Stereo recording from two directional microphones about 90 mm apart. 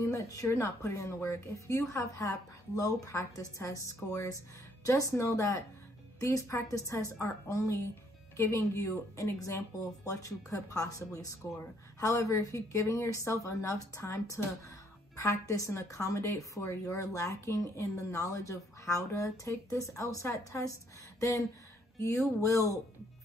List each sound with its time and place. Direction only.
0.0 s a woman's voice: 35° left (ahead or behind)
21.2 s a sound: 35° left (ahead or behind)
22.4 s a woman's voice: 35° left (ahead or behind)